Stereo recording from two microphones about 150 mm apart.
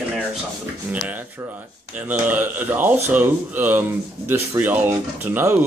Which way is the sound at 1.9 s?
10° right (ahead or behind).